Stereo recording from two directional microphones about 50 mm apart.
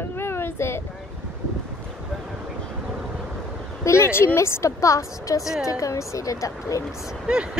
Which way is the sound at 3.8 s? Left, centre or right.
Left.